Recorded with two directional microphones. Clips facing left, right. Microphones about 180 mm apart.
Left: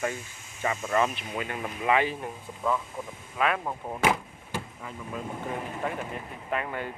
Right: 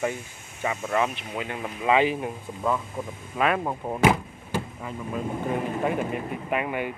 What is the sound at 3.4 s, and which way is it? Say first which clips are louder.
Speech: right 3 dB; 45° right (ahead or behind).